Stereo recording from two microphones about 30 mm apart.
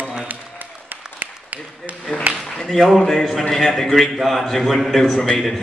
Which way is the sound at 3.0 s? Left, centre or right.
Centre.